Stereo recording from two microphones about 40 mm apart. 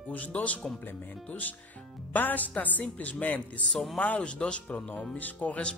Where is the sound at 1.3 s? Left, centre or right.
Left.